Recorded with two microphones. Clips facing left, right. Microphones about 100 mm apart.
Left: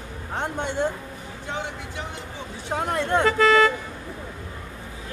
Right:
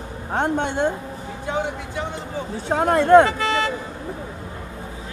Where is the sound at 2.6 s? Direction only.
55° right (ahead or behind).